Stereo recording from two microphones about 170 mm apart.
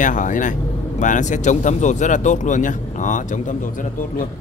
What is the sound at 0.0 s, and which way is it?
A man's voice, 50° left (ahead or behind).